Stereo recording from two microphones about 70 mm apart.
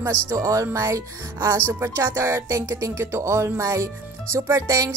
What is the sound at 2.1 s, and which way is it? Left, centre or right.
Music, right.